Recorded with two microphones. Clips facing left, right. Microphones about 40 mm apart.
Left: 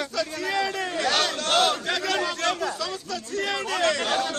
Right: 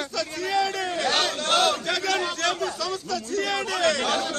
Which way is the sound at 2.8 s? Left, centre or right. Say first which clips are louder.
Right 2 dB; left.